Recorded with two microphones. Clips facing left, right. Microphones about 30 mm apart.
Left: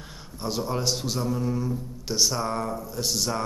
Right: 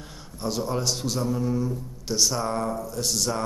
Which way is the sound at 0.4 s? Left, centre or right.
Centre.